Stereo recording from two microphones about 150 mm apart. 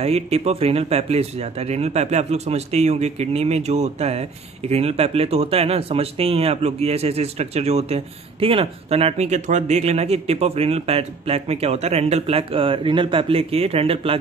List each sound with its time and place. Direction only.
0.0 s speech: 45° right (ahead or behind)